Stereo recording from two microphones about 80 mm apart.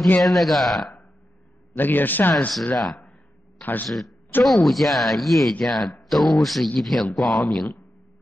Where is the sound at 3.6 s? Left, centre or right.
Left.